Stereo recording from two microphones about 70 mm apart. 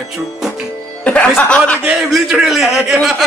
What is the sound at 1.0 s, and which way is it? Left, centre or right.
Music, left.